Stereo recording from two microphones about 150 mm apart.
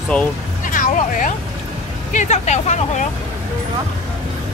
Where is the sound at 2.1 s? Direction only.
50° left (ahead or behind).